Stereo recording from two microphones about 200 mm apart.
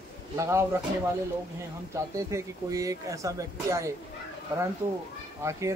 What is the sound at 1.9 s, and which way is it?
Speech, 15° right (ahead or behind).